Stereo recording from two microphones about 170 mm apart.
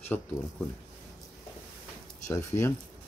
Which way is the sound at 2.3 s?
15° left (ahead or behind).